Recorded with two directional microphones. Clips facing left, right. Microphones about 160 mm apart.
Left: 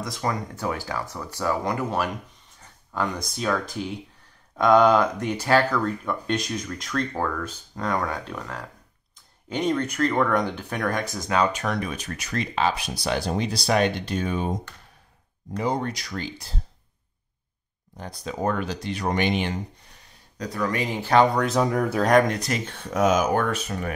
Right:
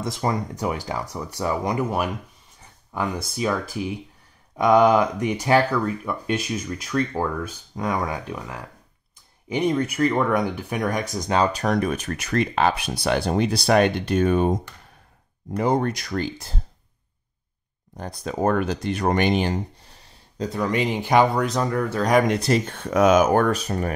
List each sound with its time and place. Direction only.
0.0 s speech: 25° right (ahead or behind)
11.2 s speech: 30° right (ahead or behind); by 14.5 s 55° right (ahead or behind)
15.5 s speech: 50° right (ahead or behind)
17.9 s speech: 45° right (ahead or behind); by 21.3 s 15° right (ahead or behind)
21.4 s speech: 5° left (ahead or behind)
22.3 s speech: 30° right (ahead or behind)
22.8 s speech: 70° right (ahead or behind); by 23.9 s 35° right (ahead or behind)